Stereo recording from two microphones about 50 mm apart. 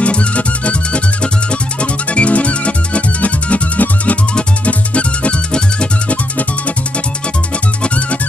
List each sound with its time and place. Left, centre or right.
0.0 s music: left
7.8 s music: left